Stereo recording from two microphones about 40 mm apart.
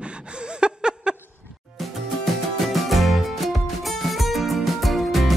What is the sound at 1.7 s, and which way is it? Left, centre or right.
Music, centre.